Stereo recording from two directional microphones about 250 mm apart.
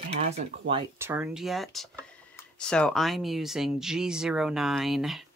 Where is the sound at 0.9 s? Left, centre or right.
Centre.